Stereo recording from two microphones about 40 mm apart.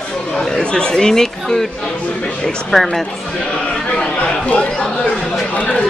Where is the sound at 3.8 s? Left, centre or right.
Left.